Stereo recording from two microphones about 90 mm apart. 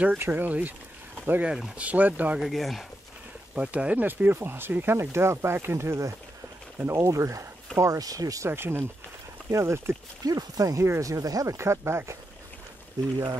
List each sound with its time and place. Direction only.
0.2 s speech: 20° right (ahead or behind)
2.4 s speech: centre (ahead or behind)
3.5 s speech: 15° right (ahead or behind); by 8.5 s 40° right (ahead or behind)
8.5 s speech: 25° right (ahead or behind)